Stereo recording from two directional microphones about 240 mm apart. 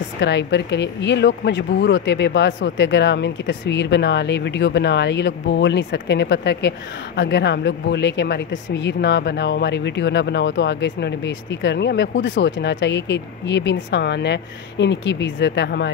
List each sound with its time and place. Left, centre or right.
0.2 s speech: left